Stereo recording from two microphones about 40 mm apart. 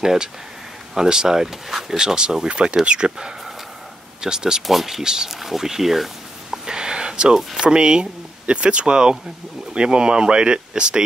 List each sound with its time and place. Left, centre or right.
0.0 s speech: centre
4.6 s speech: centre
6.5 s a sound: centre
7.6 s speech: right